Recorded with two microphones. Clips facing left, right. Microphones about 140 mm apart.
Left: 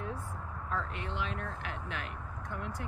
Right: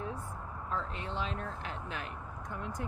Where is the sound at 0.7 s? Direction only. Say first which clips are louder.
Even; 25° right (ahead or behind).